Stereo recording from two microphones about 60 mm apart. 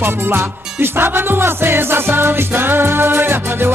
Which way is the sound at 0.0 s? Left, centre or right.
Right.